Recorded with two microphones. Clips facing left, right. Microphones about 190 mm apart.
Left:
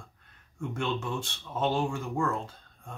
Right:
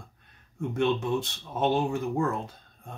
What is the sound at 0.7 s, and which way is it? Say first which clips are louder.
Speech: right 7 dB; 20° right (ahead or behind).